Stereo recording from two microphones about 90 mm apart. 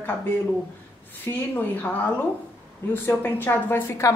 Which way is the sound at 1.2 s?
20° left (ahead or behind).